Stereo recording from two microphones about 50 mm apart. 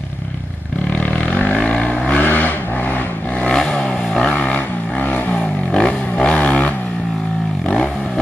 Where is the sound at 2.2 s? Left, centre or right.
Left.